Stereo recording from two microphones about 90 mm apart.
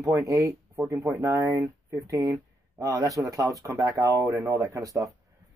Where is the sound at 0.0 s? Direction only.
35° right (ahead or behind).